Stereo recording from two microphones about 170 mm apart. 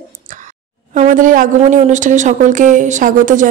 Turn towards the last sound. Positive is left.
turn(degrees=-50)  # may be behind; listen again after turning